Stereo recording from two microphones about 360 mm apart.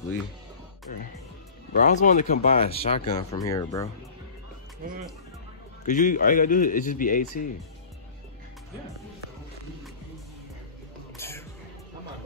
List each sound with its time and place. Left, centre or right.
1.8 s speech: left
5.9 s speech: left
11.1 s music: centre